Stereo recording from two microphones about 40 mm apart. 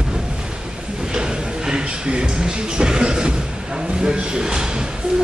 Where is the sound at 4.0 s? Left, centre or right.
Centre.